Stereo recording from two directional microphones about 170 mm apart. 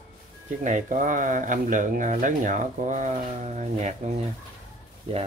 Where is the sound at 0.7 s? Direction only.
50° right (ahead or behind).